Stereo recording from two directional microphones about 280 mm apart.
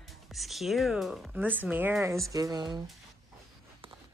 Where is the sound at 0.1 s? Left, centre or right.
Centre.